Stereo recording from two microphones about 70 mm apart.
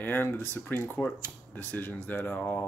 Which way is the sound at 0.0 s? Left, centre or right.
Left.